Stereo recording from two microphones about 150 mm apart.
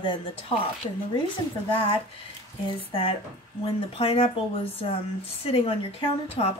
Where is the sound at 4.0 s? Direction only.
40° left (ahead or behind).